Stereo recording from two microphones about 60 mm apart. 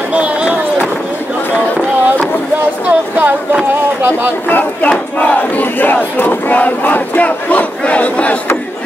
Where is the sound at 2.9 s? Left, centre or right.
Right.